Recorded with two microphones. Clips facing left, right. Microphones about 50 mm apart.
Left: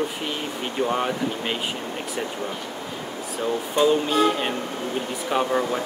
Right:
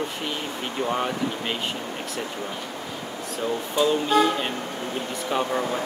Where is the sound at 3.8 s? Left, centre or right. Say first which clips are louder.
Left 1 dB; centre.